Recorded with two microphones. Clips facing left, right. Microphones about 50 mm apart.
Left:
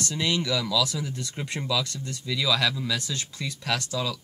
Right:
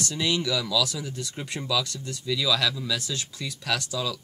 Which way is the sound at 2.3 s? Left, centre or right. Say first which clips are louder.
Even; centre.